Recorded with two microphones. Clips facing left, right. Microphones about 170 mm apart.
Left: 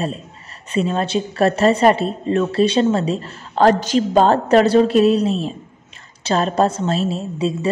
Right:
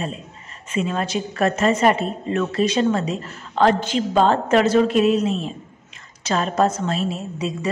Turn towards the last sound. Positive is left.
turn(degrees=30)  # may be behind; listen again after turning